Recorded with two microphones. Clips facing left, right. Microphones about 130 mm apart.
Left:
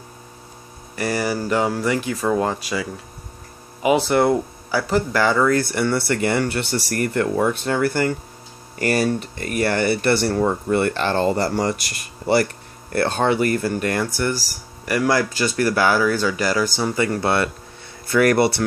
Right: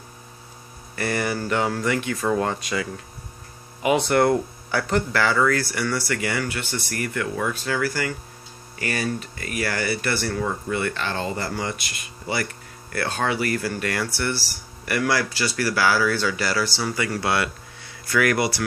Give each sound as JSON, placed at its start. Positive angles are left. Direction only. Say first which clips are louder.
{"t": 0.9, "sound": "speech", "louder": "left 3 dB", "side_deg": 10}
{"t": 2.0, "sound": "speech", "louder": "left 2 dB", "side_deg": 30}
{"t": 2.3, "sound": "speech", "louder": "left 2 dB", "side_deg": 10}
{"t": 3.9, "sound": "speech", "louder": "left 2 dB", "side_deg": 5}
{"t": 5.1, "sound": "speech", "louder": "left 4 dB", "side_deg": 20}
{"t": 7.6, "sound": "speech", "louder": "left 5 dB", "side_deg": 25}
{"t": 8.7, "sound": "speech", "louder": "left 7 dB", "side_deg": 40}
{"t": 12.9, "sound": "speech", "louder": "left 6 dB", "side_deg": 30}
{"t": 14.3, "sound": "speech", "louder": "left 3 dB", "side_deg": 40}
{"t": 15.0, "sound": "speech", "louder": "left 4 dB", "side_deg": 20}
{"t": 18.2, "sound": "speech", "louder": "left 6 dB", "side_deg": 35}